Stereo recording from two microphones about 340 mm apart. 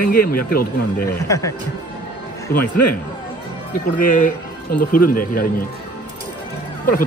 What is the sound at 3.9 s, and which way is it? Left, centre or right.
Speech, left.